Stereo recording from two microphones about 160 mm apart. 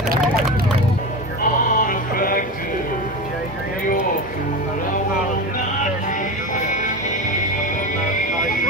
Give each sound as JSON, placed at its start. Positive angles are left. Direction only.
{"t": 1.8, "sound": "music", "side_deg": 60}
{"t": 6.5, "sound": "music", "side_deg": 50}